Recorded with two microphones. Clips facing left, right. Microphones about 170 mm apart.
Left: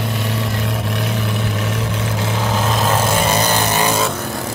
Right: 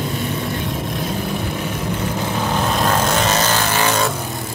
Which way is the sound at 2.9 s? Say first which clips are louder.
Left 2 dB; 10° left (ahead or behind).